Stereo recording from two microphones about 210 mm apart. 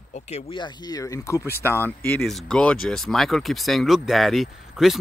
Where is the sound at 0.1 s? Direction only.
30° left (ahead or behind).